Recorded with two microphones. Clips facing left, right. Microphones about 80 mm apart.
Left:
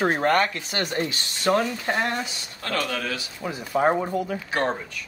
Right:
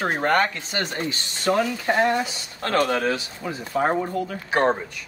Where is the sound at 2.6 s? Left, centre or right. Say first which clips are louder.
Right 6 dB; right.